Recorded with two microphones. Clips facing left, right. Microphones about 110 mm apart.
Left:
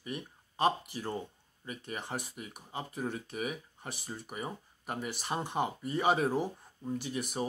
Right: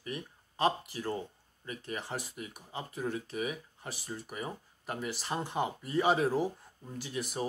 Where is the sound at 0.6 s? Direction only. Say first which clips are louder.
Even; 20° left (ahead or behind).